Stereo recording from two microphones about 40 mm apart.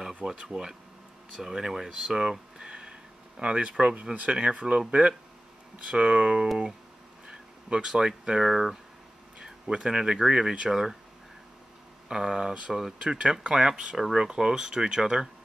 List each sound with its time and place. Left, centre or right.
0.4 s speech: centre
2.6 s speech: right
9.4 s speech: right
10.7 s speech: centre
12.1 s speech: centre